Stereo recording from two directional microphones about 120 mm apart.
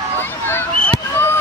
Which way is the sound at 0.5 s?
20° left (ahead or behind).